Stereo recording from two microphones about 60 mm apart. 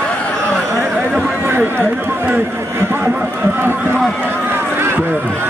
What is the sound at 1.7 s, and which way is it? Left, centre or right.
Speech, right.